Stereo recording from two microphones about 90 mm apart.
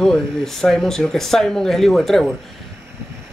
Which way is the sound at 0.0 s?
5° left (ahead or behind).